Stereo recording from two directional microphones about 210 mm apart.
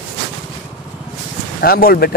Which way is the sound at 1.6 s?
45° left (ahead or behind).